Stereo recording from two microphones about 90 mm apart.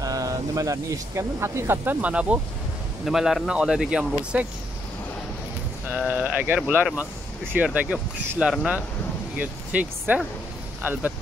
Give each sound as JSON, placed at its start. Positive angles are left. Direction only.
{"t": 0.0, "sound": "speech", "side_deg": -40}
{"t": 2.0, "sound": "speech", "side_deg": -15}
{"t": 3.1, "sound": "speech", "side_deg": -5}
{"t": 6.0, "sound": "speech", "side_deg": -15}